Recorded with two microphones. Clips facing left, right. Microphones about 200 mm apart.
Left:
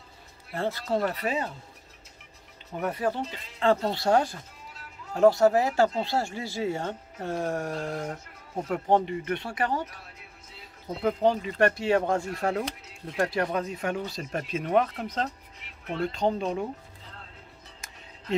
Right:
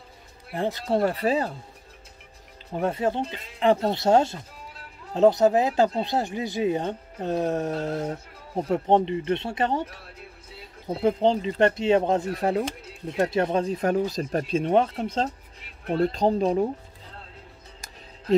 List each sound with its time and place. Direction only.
0.5 s speech: 15° right (ahead or behind)
0.8 s speech: 30° right (ahead or behind)
2.7 s speech: 25° right (ahead or behind)
10.9 s speech: 30° right (ahead or behind)